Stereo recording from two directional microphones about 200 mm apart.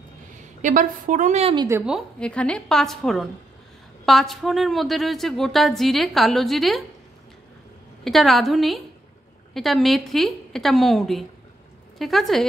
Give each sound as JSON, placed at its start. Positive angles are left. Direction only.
{"t": 0.6, "sound": "a woman's voice", "side_deg": -40}
{"t": 1.7, "sound": "a woman's voice", "side_deg": -5}
{"t": 8.0, "sound": "a woman's voice", "side_deg": 0}